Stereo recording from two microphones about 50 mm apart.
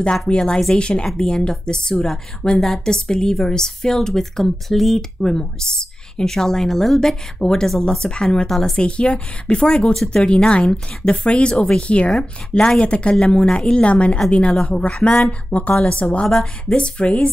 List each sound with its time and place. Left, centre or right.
0.3 s a woman's voice: centre
10.6 s a woman's voice: centre
11.1 s speech: left
12.1 s a woman's voice: centre
12.8 s speech: left
16.3 s a woman's voice: centre
16.7 s speech: left